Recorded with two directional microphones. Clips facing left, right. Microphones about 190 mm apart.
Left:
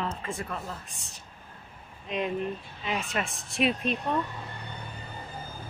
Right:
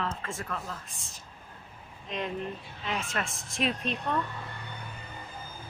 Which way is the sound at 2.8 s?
10° left (ahead or behind).